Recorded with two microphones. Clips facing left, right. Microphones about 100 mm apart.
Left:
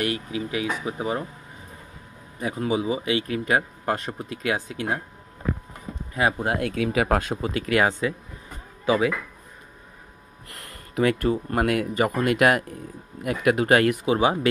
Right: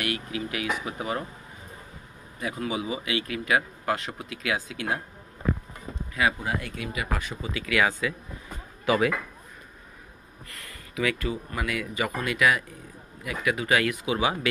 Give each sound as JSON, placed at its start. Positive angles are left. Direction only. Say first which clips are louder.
{"t": 0.0, "sound": "speech", "louder": "left 4 dB", "side_deg": 25}
{"t": 2.4, "sound": "speech", "louder": "left 5 dB", "side_deg": 35}
{"t": 6.1, "sound": "speech", "louder": "left 2 dB", "side_deg": 40}
{"t": 6.4, "sound": "speech", "louder": "left 7 dB", "side_deg": 70}
{"t": 7.6, "sound": "speech", "louder": "left 2 dB", "side_deg": 35}
{"t": 8.8, "sound": "speech", "louder": "left 2 dB", "side_deg": 20}
{"t": 11.0, "sound": "speech", "louder": "left 6 dB", "side_deg": 45}